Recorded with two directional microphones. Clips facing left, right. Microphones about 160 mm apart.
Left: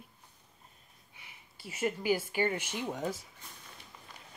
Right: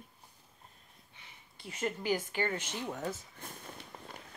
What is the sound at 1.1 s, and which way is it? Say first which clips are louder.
Speech: left 2 dB; 10° left (ahead or behind).